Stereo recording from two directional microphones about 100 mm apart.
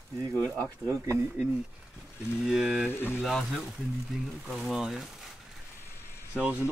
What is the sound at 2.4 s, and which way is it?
Speech, 5° right (ahead or behind).